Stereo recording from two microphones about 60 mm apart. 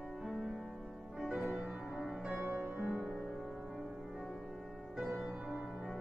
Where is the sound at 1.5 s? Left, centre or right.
Right.